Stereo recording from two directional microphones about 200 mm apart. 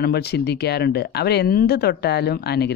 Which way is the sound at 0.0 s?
50° left (ahead or behind).